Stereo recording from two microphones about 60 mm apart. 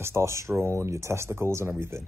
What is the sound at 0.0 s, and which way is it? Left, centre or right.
Speech, right.